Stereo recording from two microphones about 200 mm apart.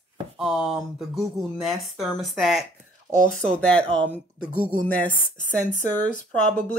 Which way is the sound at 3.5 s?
5° left (ahead or behind).